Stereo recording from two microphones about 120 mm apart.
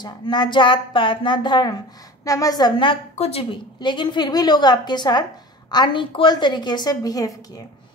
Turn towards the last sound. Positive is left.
turn(degrees=30)  # may be behind; listen again after turning